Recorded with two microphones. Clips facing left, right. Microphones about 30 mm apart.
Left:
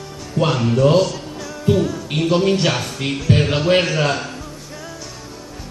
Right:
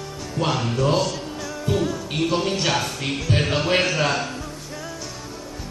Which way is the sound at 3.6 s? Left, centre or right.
Centre.